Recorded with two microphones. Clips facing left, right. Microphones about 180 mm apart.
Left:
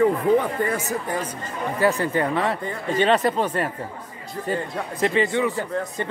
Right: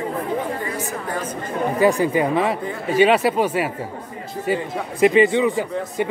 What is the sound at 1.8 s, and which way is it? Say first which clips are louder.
A man's voice: right 3 dB; 10° right (ahead or behind).